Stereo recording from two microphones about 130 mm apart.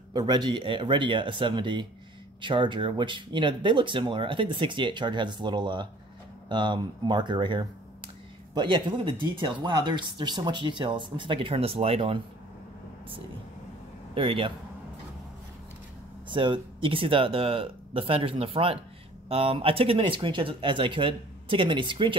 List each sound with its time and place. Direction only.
0.1 s speech: 35° right (ahead or behind)
14.1 s speech: 45° right (ahead or behind)
16.3 s speech: 40° right (ahead or behind)